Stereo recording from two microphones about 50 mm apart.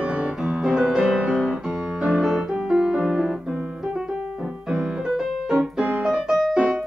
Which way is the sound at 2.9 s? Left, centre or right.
Centre.